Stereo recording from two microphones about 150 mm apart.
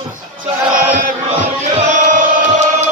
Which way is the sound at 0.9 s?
65° right (ahead or behind).